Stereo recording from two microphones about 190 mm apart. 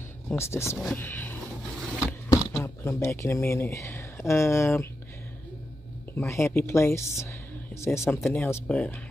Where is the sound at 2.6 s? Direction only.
15° left (ahead or behind).